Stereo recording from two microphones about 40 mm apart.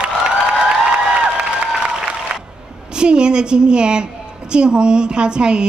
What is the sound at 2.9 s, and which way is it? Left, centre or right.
A woman's voice, right.